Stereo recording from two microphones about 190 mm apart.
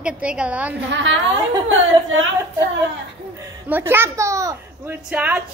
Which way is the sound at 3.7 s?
10° right (ahead or behind).